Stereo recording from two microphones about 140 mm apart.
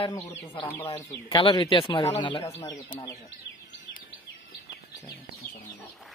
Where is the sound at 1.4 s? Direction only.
35° left (ahead or behind).